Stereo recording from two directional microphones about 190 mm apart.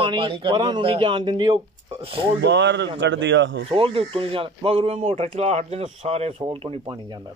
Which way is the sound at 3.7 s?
30° right (ahead or behind).